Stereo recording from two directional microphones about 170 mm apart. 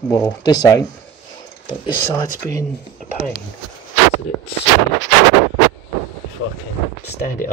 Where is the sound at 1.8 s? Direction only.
20° left (ahead or behind).